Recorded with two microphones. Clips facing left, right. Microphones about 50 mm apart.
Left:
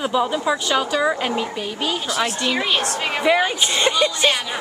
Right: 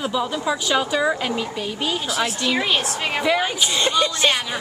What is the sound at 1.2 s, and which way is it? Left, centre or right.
Speech, centre.